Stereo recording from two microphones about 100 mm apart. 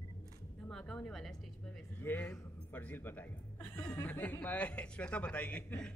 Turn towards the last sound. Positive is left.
turn(degrees=10)  # may be behind; listen again after turning